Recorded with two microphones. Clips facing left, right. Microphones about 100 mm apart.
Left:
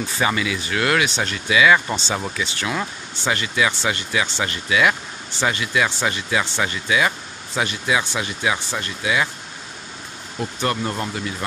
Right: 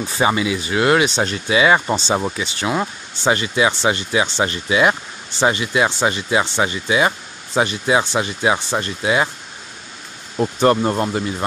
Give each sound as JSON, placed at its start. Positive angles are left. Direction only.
{"t": 0.2, "sound": "speech", "side_deg": -25}
{"t": 10.3, "sound": "speech", "side_deg": -35}